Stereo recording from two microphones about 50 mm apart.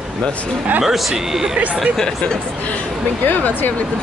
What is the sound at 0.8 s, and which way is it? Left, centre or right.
Speech, centre.